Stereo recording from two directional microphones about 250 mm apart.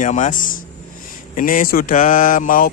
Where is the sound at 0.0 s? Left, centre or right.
Left.